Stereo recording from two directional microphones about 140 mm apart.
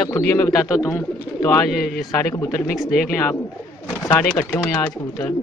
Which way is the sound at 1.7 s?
Centre (ahead or behind).